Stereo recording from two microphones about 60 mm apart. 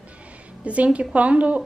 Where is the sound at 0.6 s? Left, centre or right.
Right.